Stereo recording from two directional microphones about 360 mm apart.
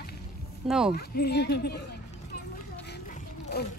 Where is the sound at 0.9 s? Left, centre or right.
Left.